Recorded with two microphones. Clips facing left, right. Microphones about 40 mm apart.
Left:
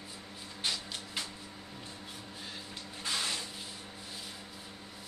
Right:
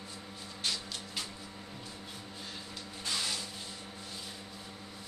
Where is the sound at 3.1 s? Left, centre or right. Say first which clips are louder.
Left 1 dB; centre.